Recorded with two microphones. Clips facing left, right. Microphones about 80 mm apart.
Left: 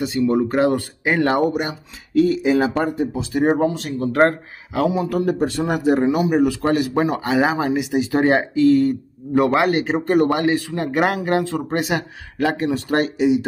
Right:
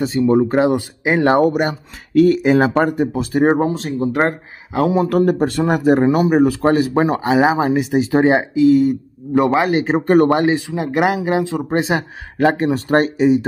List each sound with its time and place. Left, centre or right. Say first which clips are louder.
0.0 s speech: right 4 dB; right
1.4 s speech: right 5 dB; right
4.1 s speech: left 3 dB; centre
4.7 s speech: right 4 dB; right
5.1 s speech: right 4 dB; right
7.7 s speech: right 4 dB; right
8.2 s speech: right 2 dB; centre
9.8 s speech: right 4 dB; right
10.3 s speech: right 3 dB; right
10.7 s speech: right 2 dB; centre
11.7 s speech: right 5 dB; right